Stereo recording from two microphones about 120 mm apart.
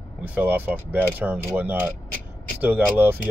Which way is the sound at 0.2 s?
10° right (ahead or behind).